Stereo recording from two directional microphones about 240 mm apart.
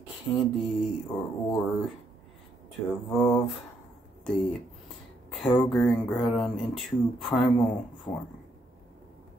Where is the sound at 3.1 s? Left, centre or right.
Centre.